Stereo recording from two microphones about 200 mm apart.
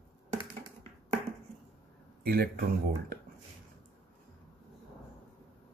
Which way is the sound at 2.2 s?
50° right (ahead or behind).